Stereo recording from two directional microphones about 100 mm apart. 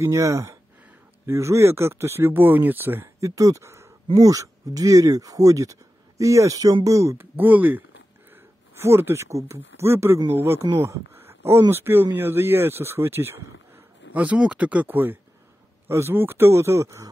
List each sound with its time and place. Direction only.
0.0 s speech: 30° right (ahead or behind)
10.8 s a sound: 25° right (ahead or behind)
11.7 s speech: 25° right (ahead or behind)